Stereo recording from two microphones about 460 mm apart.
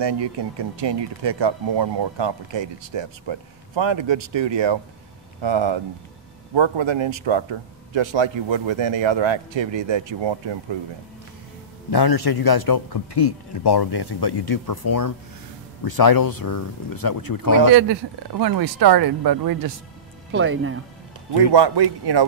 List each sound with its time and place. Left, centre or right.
0.0 s speech: right
11.9 s speech: left
17.6 s speech: right
20.2 s speech: right
21.5 s speech: right